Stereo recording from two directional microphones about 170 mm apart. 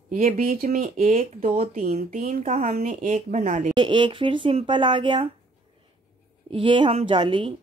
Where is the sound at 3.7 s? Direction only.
30° right (ahead or behind).